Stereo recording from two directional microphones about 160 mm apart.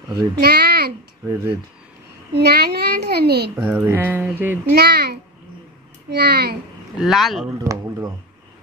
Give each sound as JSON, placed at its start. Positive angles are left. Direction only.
{"t": 0.4, "sound": "a sound", "side_deg": -80}
{"t": 1.2, "sound": "speech", "side_deg": -20}
{"t": 2.3, "sound": "a child's voice", "side_deg": -90}
{"t": 3.5, "sound": "speech", "side_deg": -10}
{"t": 4.7, "sound": "a child's voice", "side_deg": -90}
{"t": 7.0, "sound": "speech", "side_deg": 0}
{"t": 7.5, "sound": "speech", "side_deg": -20}